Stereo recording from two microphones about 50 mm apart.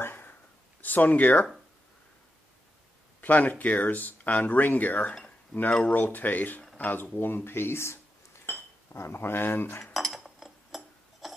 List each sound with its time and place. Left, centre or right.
0.0 s a sound: left
3.2 s speech: left
9.9 s chink: centre